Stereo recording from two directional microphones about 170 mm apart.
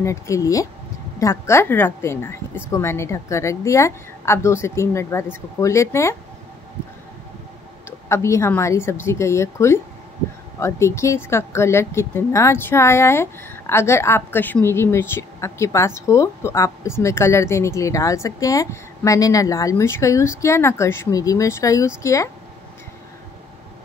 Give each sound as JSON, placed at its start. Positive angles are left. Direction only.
{"t": 0.0, "sound": "speech", "side_deg": 20}
{"t": 8.1, "sound": "speech", "side_deg": 15}